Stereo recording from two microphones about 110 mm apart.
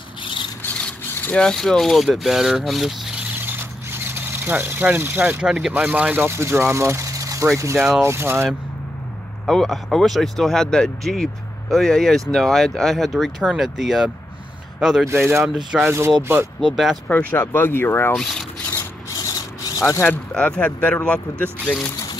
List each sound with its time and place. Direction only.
0.2 s a sound: 50° left (ahead or behind)
0.7 s speech: 10° left (ahead or behind)
3.3 s speech: 20° right (ahead or behind)
9.5 s speech: 5° left (ahead or behind)
15.8 s speech: 20° right (ahead or behind)
16.6 s speech: centre (ahead or behind)
17.1 s speech: 15° left (ahead or behind)
18.1 s speech: centre (ahead or behind)
18.7 s rub: 30° left (ahead or behind)
19.8 s speech: 20° left (ahead or behind)